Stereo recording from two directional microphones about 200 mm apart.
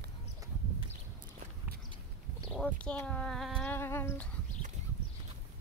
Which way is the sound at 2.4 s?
5° left (ahead or behind).